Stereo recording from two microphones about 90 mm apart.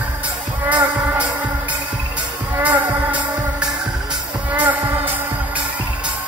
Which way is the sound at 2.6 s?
15° right (ahead or behind).